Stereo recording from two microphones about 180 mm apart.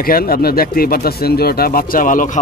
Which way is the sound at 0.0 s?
55° left (ahead or behind).